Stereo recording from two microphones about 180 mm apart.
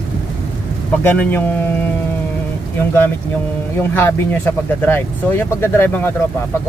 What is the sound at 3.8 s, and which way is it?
Speech, 15° left (ahead or behind).